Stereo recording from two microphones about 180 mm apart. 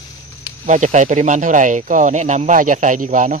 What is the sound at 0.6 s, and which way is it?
Speech, 40° right (ahead or behind).